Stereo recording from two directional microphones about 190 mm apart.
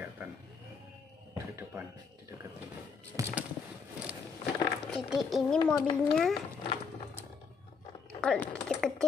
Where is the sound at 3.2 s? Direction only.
15° right (ahead or behind).